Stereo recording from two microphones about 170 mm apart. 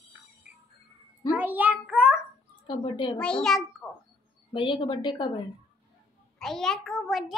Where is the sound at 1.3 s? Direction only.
10° right (ahead or behind).